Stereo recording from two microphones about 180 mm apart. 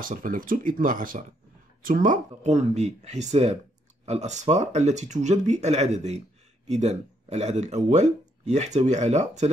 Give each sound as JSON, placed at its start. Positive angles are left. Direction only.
{"t": 0.0, "sound": "speech", "side_deg": -50}